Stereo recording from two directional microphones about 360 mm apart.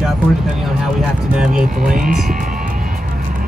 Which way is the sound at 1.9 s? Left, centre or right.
Right.